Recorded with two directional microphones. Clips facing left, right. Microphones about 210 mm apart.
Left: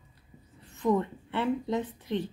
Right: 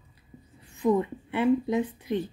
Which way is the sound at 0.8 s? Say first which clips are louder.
Right 3 dB; 10° right (ahead or behind).